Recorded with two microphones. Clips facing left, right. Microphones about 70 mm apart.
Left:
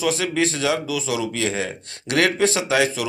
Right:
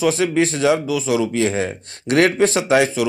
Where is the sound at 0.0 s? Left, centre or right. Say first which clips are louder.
Right 4 dB; right.